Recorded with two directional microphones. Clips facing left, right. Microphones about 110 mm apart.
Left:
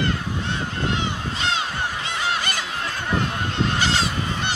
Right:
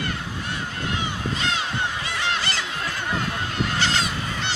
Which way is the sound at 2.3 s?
15° left (ahead or behind).